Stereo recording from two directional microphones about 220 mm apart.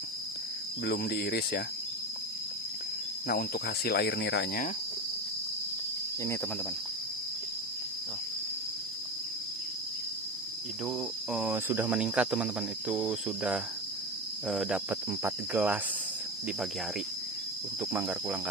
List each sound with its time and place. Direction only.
0.8 s speech: 45° left (ahead or behind)
3.3 s speech: 45° left (ahead or behind)
10.9 s speech: 5° right (ahead or behind)
14.5 s cricket: 5° right (ahead or behind)
17.9 s cricket: 5° right (ahead or behind)